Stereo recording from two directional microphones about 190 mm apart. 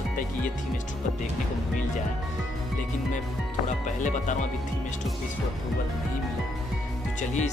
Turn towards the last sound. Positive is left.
turn(degrees=40)  # may be behind; listen again after turning